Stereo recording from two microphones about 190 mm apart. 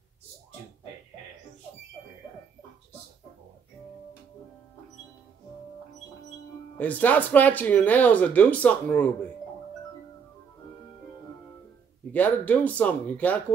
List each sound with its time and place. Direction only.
6.8 s speech: 10° left (ahead or behind)
12.1 s speech: 10° left (ahead or behind)